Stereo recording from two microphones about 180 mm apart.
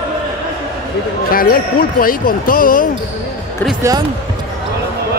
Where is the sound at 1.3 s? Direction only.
55° left (ahead or behind).